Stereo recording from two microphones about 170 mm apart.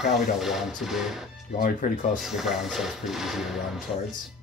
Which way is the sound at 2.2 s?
Centre (ahead or behind).